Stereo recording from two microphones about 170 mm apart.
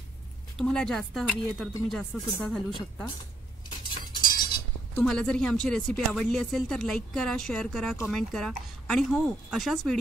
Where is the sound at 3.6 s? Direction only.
25° left (ahead or behind).